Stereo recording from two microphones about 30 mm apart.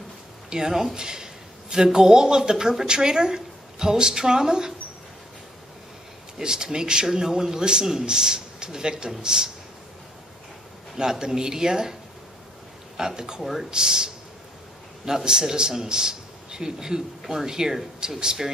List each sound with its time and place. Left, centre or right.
0.5 s a man's voice: centre
6.3 s a man's voice: right
11.0 s a man's voice: right
13.4 s speech: centre
13.7 s a man's voice: right